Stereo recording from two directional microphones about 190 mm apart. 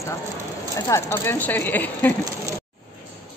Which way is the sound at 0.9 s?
15° left (ahead or behind).